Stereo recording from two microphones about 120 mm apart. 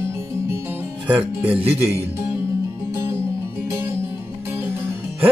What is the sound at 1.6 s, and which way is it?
Speech, 55° right (ahead or behind).